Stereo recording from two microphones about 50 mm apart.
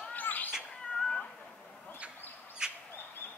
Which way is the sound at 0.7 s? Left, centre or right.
Centre.